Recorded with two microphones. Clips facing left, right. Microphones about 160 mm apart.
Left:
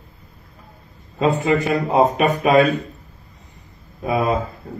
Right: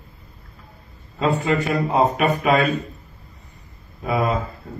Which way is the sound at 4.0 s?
20° left (ahead or behind).